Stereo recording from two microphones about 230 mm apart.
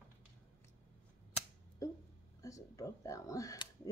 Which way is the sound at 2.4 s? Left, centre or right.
Centre.